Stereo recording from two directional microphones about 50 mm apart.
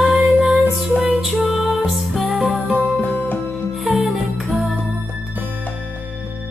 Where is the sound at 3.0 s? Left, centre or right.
Left.